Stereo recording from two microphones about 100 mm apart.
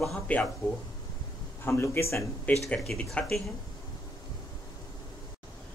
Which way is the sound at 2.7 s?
5° left (ahead or behind).